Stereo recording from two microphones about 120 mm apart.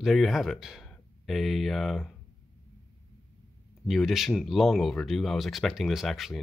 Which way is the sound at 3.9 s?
Centre (ahead or behind).